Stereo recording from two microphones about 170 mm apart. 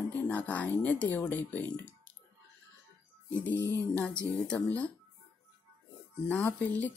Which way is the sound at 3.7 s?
10° left (ahead or behind).